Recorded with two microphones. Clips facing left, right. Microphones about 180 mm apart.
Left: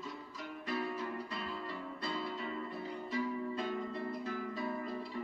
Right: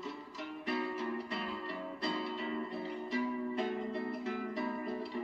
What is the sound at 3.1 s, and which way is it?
Music, 25° right (ahead or behind).